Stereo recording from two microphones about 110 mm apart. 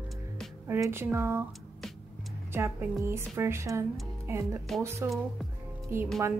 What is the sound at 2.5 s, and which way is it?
A woman's voice, 20° right (ahead or behind).